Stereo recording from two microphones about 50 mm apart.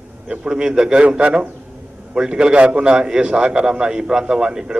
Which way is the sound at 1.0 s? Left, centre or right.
Right.